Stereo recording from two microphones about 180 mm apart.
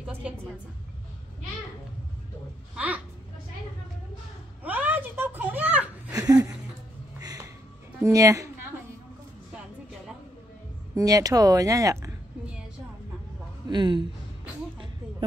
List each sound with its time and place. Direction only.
0.0 s a woman's voice: 5° right (ahead or behind)
2.7 s a child's voice: 10° right (ahead or behind)
4.6 s a sound: 10° right (ahead or behind)
7.2 s music: 20° right (ahead or behind)
8.0 s a sound: 20° right (ahead or behind)
11.0 s speech: 20° right (ahead or behind)
13.7 s speech: 25° right (ahead or behind)